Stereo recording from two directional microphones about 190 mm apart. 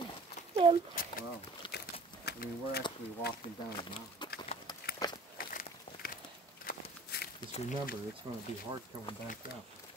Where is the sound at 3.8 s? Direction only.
25° left (ahead or behind).